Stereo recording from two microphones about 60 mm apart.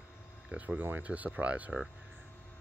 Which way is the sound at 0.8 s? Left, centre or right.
Right.